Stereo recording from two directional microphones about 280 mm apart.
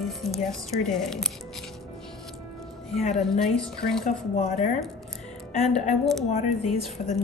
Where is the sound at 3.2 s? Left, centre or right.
Centre.